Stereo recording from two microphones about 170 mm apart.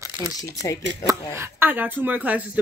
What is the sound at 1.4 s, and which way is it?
A woman's voice, 10° right (ahead or behind).